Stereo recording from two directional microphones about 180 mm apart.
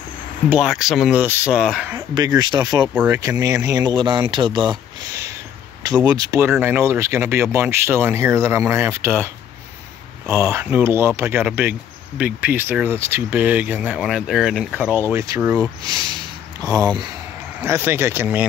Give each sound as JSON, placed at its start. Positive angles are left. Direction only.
{"t": 0.5, "sound": "speech", "side_deg": -5}
{"t": 2.0, "sound": "speech", "side_deg": -20}
{"t": 17.6, "sound": "speech", "side_deg": -15}